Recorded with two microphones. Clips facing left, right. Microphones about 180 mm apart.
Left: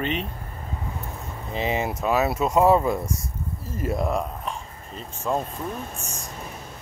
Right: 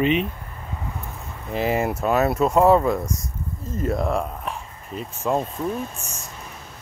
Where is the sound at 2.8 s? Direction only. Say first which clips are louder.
Right 2 dB; 25° left (ahead or behind).